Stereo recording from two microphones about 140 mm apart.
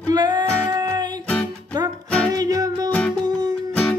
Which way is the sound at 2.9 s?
10° left (ahead or behind).